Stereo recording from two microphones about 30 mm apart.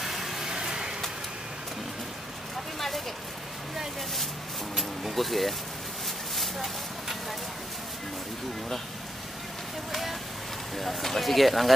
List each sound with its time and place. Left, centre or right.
0.0 s vehicle: centre
0.5 s vehicle: right
4.7 s speech: centre
6.3 s a sound: centre
10.8 s speech: centre